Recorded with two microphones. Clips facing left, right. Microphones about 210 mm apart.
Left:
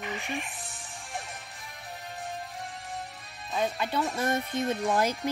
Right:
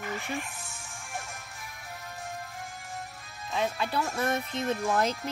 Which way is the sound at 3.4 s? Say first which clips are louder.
Left 1 dB; centre (ahead or behind).